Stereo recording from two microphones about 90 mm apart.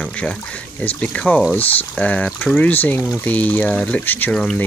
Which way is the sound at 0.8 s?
15° left (ahead or behind).